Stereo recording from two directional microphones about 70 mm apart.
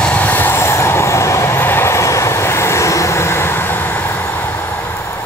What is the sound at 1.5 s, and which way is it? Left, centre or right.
Vehicle, left.